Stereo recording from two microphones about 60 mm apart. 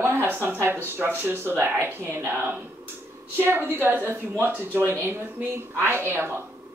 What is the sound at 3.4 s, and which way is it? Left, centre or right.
Speech, right.